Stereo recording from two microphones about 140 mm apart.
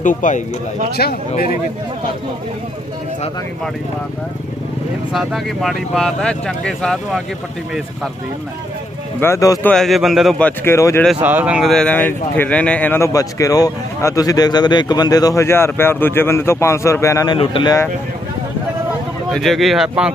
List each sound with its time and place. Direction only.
0.0 s speech: 65° left (ahead or behind)
5.1 s speech: centre (ahead or behind)
9.2 s speech: 20° left (ahead or behind)
9.6 s speech: 5° left (ahead or behind)
10.6 s speech: 20° left (ahead or behind)
11.1 s speech: 10° right (ahead or behind); by 17.4 s 20° left (ahead or behind)
17.4 s speech: 40° left (ahead or behind)
19.3 s speech: centre (ahead or behind)